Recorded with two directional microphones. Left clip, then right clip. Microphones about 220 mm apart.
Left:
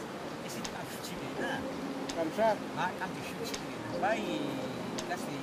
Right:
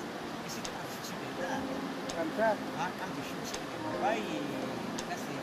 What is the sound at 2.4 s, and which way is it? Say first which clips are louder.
Speech: left 1 dB; 15° left (ahead or behind).